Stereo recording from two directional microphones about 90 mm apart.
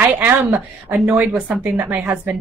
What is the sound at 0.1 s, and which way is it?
A woman's voice, 20° right (ahead or behind).